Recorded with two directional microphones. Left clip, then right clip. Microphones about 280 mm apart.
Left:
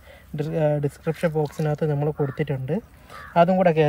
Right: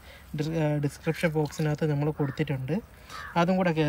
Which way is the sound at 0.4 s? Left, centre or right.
Centre.